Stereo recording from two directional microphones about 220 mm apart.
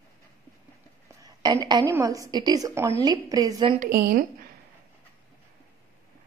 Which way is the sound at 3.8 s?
40° right (ahead or behind).